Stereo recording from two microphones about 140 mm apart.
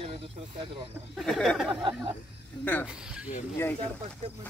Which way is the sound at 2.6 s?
15° left (ahead or behind).